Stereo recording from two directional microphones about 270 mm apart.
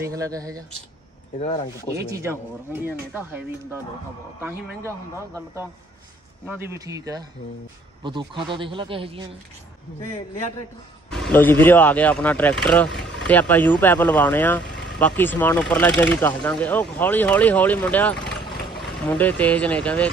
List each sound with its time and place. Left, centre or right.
0.0 s speech: centre
1.9 s speech: centre
11.1 s speech: centre
14.6 s vehicle: left
15.0 s speech: centre